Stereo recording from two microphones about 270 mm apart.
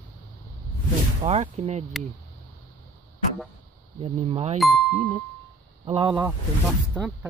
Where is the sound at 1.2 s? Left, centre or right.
Right.